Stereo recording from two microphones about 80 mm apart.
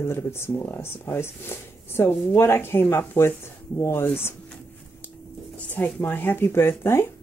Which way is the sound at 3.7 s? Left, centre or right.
Left.